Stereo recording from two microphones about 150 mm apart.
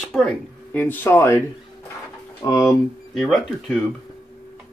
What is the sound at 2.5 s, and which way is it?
Speech, 20° left (ahead or behind).